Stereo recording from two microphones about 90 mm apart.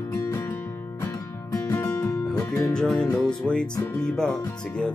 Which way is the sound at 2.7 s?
5° left (ahead or behind).